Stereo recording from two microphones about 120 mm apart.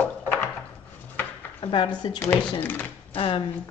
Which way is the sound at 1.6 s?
45° left (ahead or behind).